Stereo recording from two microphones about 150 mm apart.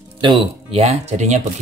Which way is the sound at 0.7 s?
45° right (ahead or behind).